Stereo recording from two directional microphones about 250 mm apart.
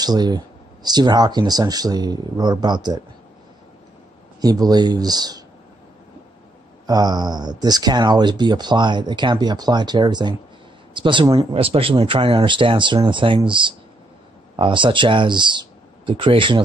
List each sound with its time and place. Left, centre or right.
0.0 s speech: centre
4.4 s speech: centre
6.9 s speech: centre